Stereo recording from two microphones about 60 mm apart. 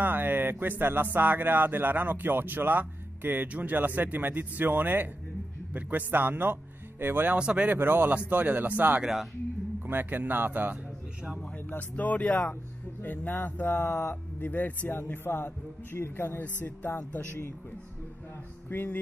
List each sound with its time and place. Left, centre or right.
0.0 s speech: right
7.3 s speech: centre
7.7 s speech: right
9.0 s speech: centre
9.8 s speech: right
11.9 s speech: left
14.4 s speech: left
18.7 s speech: left